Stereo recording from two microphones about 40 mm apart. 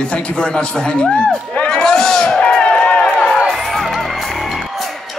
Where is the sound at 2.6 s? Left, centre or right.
Left.